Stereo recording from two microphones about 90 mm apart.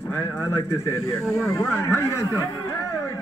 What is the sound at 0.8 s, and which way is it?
Speech, 35° left (ahead or behind).